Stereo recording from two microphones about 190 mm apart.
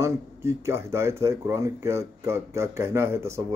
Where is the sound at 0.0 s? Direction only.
15° right (ahead or behind).